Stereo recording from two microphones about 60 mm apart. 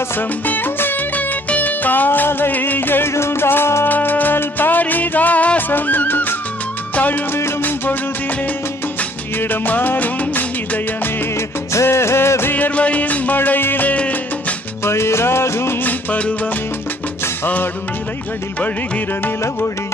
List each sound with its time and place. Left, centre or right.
0.5 s music: left
7.6 s music: left
9.4 s music of bollywood: left
11.7 s music: left
12.5 s music: left
14.9 s music: left
15.8 s music: left